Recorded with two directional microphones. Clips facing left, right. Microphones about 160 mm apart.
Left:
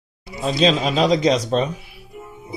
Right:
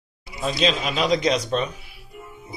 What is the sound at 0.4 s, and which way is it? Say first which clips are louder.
A man's voice: left 5 dB; 30° left (ahead or behind).